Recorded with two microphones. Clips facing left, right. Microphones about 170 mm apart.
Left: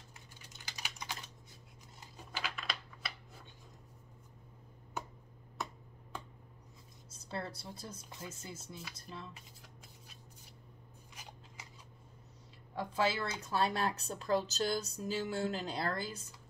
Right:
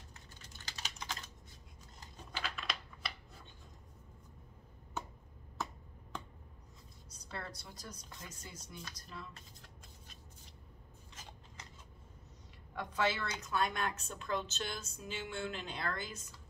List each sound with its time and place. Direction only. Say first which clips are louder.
0.5 s typing: even; 15° left (ahead or behind)
2.3 s a sound: even; 5° left (ahead or behind)
7.1 s speech: left 4 dB; 30° left (ahead or behind)
8.3 s chopping: left 4 dB; 25° left (ahead or behind)
9.3 s shuffling cards: left 1 dB; 10° left (ahead or behind)
12.7 s a woman's voice: left 2 dB; 30° left (ahead or behind)